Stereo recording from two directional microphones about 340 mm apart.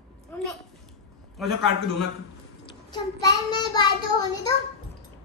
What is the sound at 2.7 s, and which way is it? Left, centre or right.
Child singing, centre.